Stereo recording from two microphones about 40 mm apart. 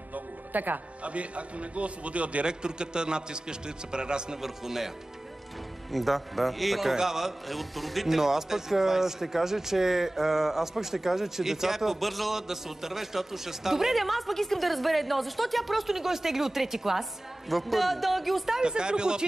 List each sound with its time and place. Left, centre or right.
0.1 s music: right
1.0 s a man's voice: right
2.4 s a man's voice: right
4.4 s a man's voice: centre
7.4 s a man's voice: centre
18.6 s a man's voice: right